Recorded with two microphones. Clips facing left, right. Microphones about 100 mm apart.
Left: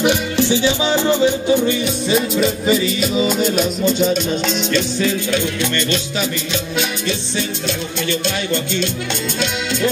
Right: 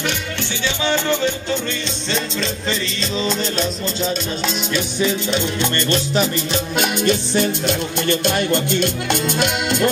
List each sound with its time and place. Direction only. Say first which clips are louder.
0.0 s music: left 8 dB; 15° left (ahead or behind)
4.7 s music: left 1 dB; 20° right (ahead or behind)
5.8 s music: right 2 dB; 45° right (ahead or behind)